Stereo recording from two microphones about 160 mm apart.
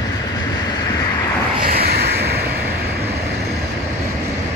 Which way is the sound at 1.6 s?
75° right (ahead or behind).